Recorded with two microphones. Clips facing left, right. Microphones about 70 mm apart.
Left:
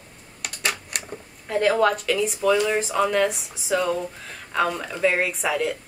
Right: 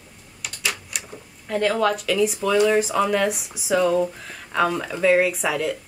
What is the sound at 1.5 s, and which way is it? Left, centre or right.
Speech, centre.